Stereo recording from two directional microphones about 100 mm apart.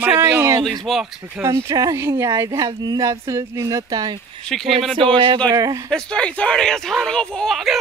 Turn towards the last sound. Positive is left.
turn(degrees=0)  # may be behind; listen again after turning